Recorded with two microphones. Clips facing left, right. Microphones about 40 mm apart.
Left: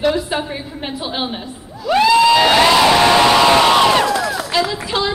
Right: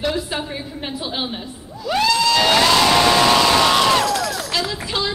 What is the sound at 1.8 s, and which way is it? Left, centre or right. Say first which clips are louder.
Crowd: left 6 dB; centre.